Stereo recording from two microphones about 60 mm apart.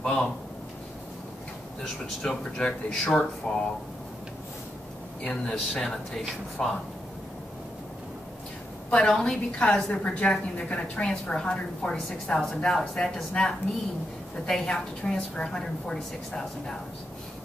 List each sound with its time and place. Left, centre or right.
0.0 s speech: centre
2.2 s a woman's voice: centre
5.2 s a woman's voice: centre
8.9 s a woman's voice: centre
14.5 s a woman's voice: centre